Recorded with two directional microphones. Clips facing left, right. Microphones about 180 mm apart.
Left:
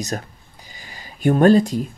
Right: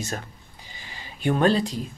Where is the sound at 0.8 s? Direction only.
45° left (ahead or behind).